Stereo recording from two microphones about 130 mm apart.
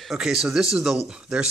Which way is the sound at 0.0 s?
5° right (ahead or behind).